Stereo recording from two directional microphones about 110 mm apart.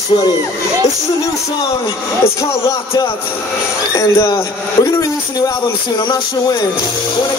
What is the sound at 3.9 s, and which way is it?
A man's voice, 30° left (ahead or behind).